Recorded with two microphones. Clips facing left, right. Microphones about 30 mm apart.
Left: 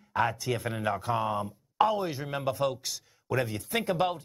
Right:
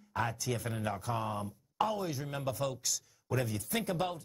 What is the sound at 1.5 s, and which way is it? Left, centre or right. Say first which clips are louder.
Speech: left 7 dB; left.